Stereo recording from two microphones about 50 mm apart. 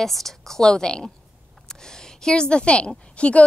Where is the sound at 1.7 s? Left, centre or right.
Centre.